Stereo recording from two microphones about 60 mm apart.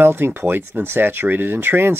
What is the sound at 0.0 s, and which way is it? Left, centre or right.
Speech, right.